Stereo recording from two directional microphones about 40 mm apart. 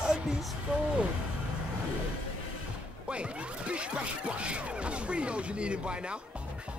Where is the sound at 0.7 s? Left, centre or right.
Right.